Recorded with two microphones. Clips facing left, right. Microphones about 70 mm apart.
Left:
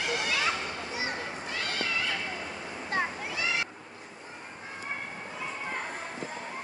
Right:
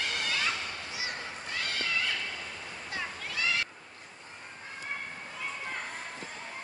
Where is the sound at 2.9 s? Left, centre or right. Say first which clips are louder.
Left 8 dB; left.